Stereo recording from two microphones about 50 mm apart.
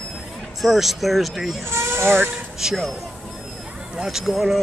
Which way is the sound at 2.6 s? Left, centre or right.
Centre.